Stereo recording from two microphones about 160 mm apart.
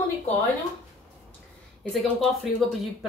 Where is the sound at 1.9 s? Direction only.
Centre (ahead or behind).